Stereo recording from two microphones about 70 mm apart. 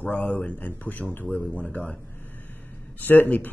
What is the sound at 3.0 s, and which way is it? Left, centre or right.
Speech, left.